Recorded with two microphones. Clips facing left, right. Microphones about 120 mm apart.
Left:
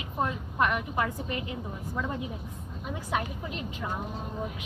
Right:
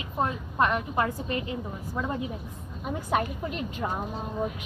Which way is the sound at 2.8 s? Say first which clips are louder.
Right 4 dB; 50° right (ahead or behind).